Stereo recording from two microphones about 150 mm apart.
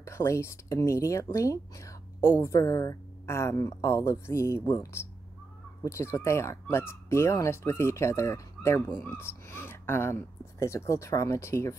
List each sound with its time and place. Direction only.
0.0 s speech: 20° left (ahead or behind)